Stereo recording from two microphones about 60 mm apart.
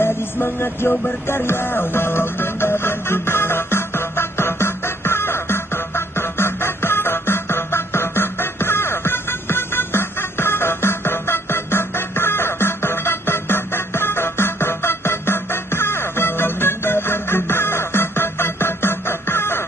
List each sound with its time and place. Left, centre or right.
0.0 s music: left